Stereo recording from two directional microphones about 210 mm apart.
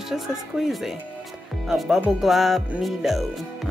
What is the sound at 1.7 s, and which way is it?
Music, 5° right (ahead or behind).